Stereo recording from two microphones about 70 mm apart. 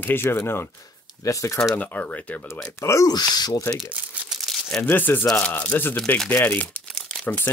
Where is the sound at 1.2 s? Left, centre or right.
Left.